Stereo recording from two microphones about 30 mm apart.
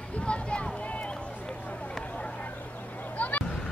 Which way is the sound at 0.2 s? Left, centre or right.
Left.